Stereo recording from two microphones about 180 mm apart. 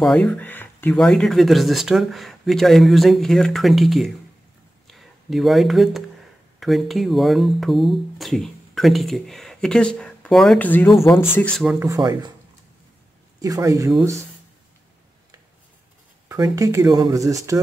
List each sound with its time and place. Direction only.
0.0 s speech: 5° left (ahead or behind)
11.8 s speech: 20° right (ahead or behind)
13.4 s speech: 20° right (ahead or behind)
16.3 s speech: 20° right (ahead or behind)